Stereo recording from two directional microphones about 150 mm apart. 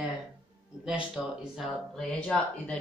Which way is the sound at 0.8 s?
5° right (ahead or behind).